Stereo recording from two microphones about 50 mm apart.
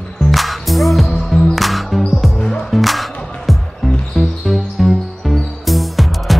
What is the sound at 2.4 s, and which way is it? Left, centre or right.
Music, centre.